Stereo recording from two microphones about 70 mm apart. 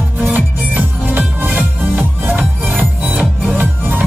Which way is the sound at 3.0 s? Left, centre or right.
Centre.